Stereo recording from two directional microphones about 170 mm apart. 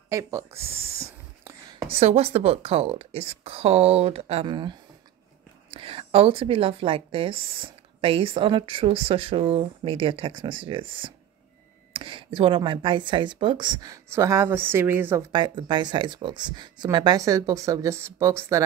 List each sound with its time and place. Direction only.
0.1 s speech: 20° right (ahead or behind)
1.0 s whispering: 15° right (ahead or behind)
1.9 s speech: 35° right (ahead or behind); by 15.2 s 10° right (ahead or behind)
15.3 s speech: 25° right (ahead or behind)